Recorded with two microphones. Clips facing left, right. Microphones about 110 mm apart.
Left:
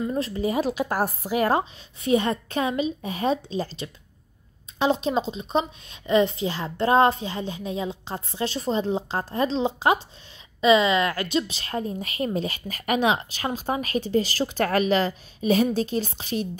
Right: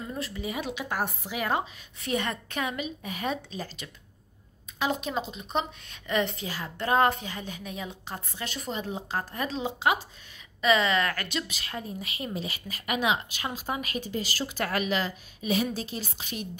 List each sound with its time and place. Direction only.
0.1 s a woman's voice: 35° left (ahead or behind)
2.0 s a woman's voice: 20° left (ahead or behind)
4.7 s a woman's voice: 30° left (ahead or behind)
10.6 s a woman's voice: 20° left (ahead or behind)
11.6 s a woman's voice: 40° left (ahead or behind)